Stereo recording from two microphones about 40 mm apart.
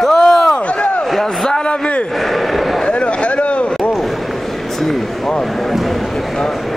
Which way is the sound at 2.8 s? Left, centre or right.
Left.